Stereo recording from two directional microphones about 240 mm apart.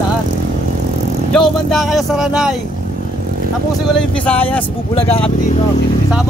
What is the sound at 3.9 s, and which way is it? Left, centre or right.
Speech, centre.